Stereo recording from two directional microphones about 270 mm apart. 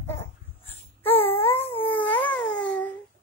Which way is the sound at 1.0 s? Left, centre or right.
Centre.